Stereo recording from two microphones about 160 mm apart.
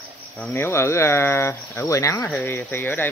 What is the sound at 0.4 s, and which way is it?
Speech, 10° left (ahead or behind).